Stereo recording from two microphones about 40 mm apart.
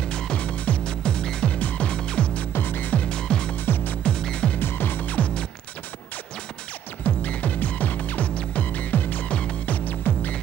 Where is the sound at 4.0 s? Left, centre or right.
Left.